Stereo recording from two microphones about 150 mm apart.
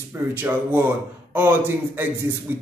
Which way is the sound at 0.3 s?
15° right (ahead or behind).